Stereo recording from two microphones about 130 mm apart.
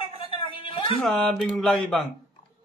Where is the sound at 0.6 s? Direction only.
40° left (ahead or behind).